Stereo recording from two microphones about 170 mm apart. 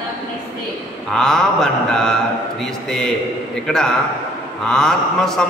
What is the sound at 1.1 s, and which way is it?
Mantra, 5° left (ahead or behind).